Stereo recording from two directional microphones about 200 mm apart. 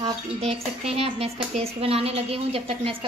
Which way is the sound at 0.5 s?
30° right (ahead or behind).